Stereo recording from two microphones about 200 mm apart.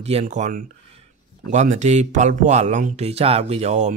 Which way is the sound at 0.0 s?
35° right (ahead or behind).